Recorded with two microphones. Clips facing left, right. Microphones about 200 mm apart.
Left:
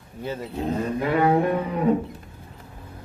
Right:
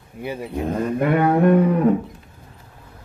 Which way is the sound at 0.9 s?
55° right (ahead or behind).